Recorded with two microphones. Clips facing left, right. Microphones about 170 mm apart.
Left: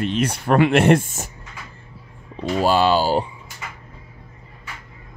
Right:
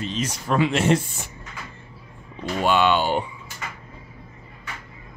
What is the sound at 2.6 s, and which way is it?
Speech, 35° left (ahead or behind).